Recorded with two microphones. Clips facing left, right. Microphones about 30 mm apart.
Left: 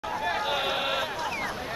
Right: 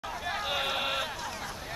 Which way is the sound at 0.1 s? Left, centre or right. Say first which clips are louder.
Left 5 dB; centre.